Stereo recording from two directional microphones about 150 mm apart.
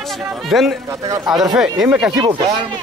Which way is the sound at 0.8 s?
20° right (ahead or behind).